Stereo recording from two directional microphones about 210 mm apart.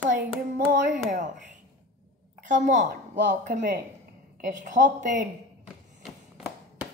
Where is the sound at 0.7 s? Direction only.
40° right (ahead or behind).